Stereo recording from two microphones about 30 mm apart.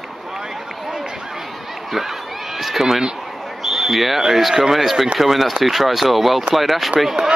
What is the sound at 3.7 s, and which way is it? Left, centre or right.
Speech, centre.